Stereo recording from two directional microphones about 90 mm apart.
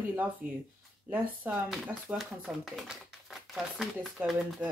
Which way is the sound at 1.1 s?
15° right (ahead or behind).